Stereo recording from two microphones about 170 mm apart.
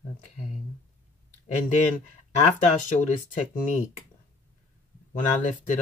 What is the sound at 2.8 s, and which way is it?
Speech, 45° left (ahead or behind).